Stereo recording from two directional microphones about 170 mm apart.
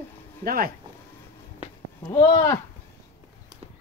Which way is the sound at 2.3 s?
25° left (ahead or behind).